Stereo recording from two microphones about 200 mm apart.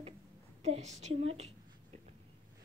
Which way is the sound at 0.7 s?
35° right (ahead or behind).